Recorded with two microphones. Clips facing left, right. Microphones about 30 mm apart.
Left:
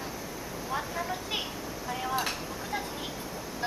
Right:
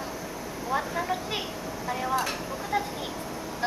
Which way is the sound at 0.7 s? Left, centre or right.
Centre.